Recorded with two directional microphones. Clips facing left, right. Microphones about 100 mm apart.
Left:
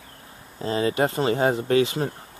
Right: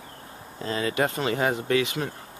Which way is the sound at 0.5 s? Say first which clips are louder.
Left 3 dB; 30° left (ahead or behind).